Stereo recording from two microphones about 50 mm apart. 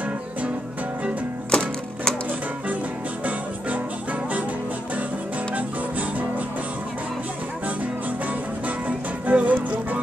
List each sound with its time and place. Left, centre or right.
1.5 s music: centre
8.6 s music: right